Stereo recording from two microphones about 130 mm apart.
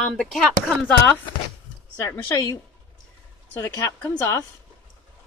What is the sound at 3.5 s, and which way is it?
Speech, 20° left (ahead or behind).